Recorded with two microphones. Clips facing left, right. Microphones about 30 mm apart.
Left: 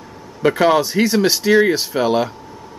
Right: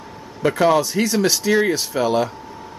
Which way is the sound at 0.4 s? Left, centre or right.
Centre.